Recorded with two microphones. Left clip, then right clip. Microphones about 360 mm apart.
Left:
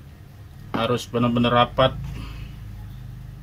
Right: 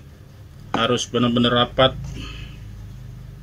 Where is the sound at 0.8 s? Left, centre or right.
Left.